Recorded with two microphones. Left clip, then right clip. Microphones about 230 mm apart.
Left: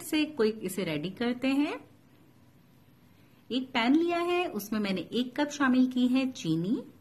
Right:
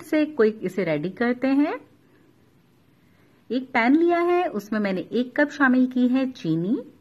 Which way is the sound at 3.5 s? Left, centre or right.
Centre.